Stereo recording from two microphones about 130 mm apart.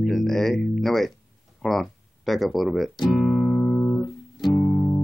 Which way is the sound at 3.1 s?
5° left (ahead or behind).